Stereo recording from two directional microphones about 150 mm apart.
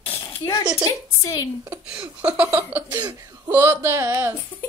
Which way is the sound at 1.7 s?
10° right (ahead or behind).